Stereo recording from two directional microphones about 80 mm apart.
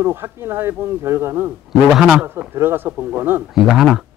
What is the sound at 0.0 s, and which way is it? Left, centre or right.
Speech, right.